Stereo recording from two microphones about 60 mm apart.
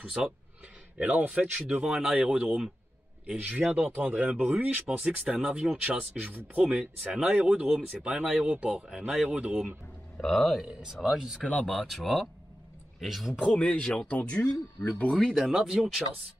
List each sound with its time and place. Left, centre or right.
0.0 s speech: centre
0.9 s speech: right
1.7 s speech: centre
3.3 s speech: right; by 9.5 s centre
10.1 s speech: centre
10.7 s speech: centre
11.6 s speech: centre
13.4 s speech: centre
15.1 s speech: centre